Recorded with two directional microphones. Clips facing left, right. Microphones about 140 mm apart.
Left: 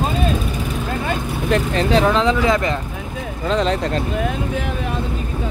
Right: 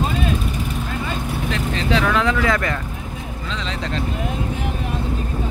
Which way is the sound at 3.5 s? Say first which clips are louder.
Left 9 dB; 50° left (ahead or behind).